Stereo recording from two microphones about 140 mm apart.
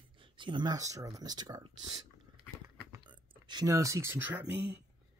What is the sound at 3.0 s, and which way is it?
Speech, 30° right (ahead or behind).